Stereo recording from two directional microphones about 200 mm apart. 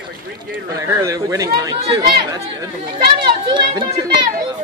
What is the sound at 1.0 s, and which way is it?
Speech, 15° right (ahead or behind).